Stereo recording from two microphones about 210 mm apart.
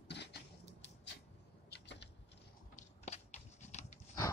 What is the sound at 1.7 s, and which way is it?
Vehicle, 55° left (ahead or behind).